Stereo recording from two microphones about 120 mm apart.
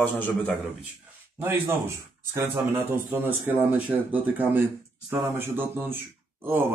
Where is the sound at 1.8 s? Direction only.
25° right (ahead or behind).